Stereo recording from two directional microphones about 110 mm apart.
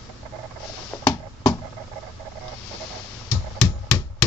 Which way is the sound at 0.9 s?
10° left (ahead or behind).